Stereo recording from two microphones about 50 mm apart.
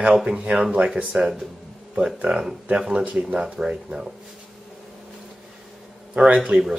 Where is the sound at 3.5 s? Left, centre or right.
Centre.